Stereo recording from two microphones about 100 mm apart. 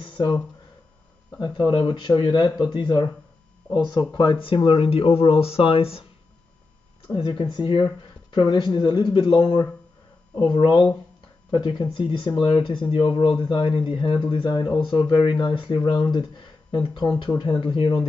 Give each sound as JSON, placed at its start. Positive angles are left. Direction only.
{"t": 0.0, "sound": "a sound", "side_deg": 60}
{"t": 1.4, "sound": "speech", "side_deg": 50}
{"t": 4.8, "sound": "speech", "side_deg": 70}
{"t": 7.1, "sound": "speech", "side_deg": 55}